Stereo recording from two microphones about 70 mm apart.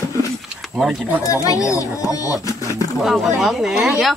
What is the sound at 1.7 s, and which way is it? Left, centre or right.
Speech, left.